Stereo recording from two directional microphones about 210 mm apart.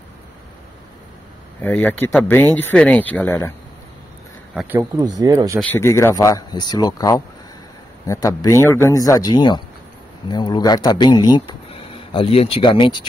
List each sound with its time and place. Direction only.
1.6 s speech: 10° left (ahead or behind)
4.6 s speech: 10° right (ahead or behind)
5.6 s speech: 10° left (ahead or behind)